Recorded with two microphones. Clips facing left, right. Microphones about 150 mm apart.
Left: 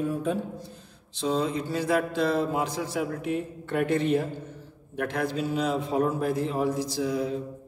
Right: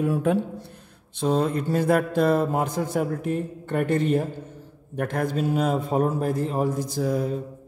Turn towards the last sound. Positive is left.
turn(degrees=-50)  # may be behind; listen again after turning